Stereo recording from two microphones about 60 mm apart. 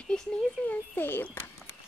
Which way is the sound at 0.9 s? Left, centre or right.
Left.